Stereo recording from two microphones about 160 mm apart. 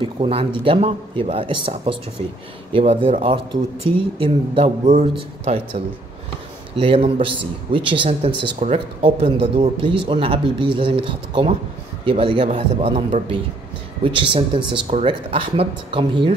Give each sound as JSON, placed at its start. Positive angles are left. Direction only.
{"t": 0.0, "sound": "speech", "side_deg": -35}
{"t": 6.8, "sound": "a man's voice", "side_deg": -35}
{"t": 14.0, "sound": "speech", "side_deg": -30}